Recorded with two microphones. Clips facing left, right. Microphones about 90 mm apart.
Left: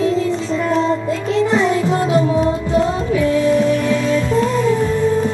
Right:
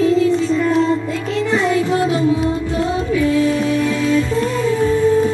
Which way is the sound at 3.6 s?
Centre (ahead or behind).